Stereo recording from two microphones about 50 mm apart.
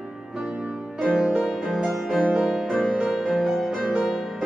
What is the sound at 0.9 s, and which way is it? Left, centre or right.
Music, centre.